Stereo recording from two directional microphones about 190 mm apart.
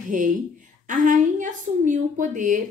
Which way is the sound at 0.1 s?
45° right (ahead or behind).